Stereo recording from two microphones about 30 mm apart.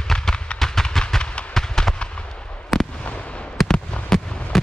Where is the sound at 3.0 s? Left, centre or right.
Left.